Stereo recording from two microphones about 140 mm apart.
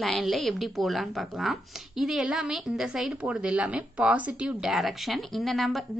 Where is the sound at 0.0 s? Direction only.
Centre (ahead or behind).